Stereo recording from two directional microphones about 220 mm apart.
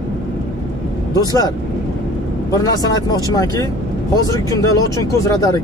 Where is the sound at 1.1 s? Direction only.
15° left (ahead or behind).